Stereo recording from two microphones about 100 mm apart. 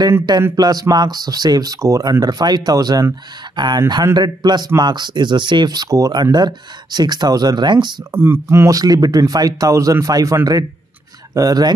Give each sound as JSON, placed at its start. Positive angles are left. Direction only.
{"t": 0.6, "sound": "speech", "side_deg": -40}
{"t": 8.1, "sound": "speech", "side_deg": -25}